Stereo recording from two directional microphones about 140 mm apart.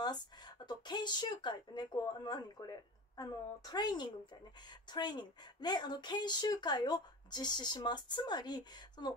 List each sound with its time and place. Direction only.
0.0 s a woman's voice: 30° left (ahead or behind)